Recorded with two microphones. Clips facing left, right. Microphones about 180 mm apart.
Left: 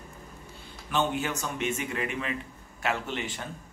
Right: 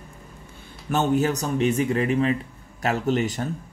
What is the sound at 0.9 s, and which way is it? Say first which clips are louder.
Speech: right 7 dB; 40° right (ahead or behind).